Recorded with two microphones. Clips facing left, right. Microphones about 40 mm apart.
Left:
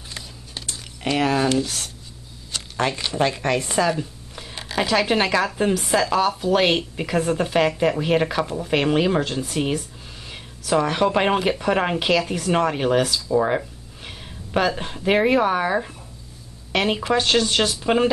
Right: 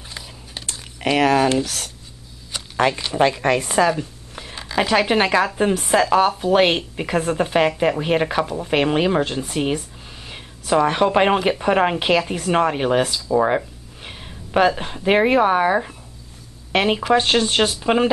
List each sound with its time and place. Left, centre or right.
1.0 s speech: right
2.5 s a sound: centre
3.1 s a woman's voice: centre
3.9 s a sound: centre
4.7 s a woman's voice: centre
5.9 s a woman's voice: right
9.8 s a sound: centre
10.6 s a woman's voice: centre
17.2 s speech: right